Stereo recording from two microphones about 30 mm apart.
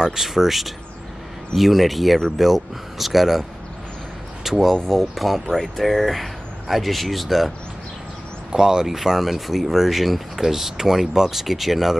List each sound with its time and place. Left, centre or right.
0.0 s speech: centre
4.4 s speech: centre
4.8 s speech: centre
8.5 s speech: right
8.8 s speech: centre